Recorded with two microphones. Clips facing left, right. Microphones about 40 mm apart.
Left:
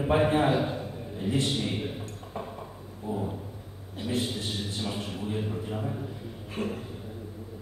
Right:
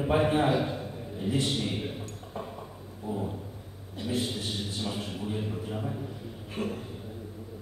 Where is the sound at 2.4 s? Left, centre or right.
Centre.